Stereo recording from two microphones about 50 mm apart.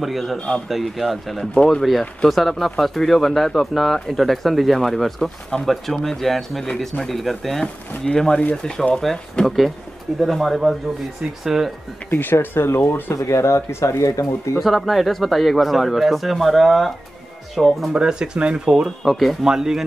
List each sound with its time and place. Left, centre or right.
0.0 s speech: centre
1.5 s speech: centre
1.8 s speech: centre
8.0 s speech: centre
9.1 s speech: centre
10.2 s speech: centre
12.1 s speech: left
12.9 s speech: left
14.6 s speech: centre
17.9 s speech: centre
19.0 s speech: centre
19.4 s speech: centre